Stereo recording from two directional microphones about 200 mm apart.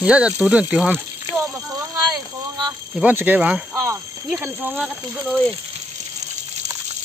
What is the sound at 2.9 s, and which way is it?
Speech, 10° right (ahead or behind).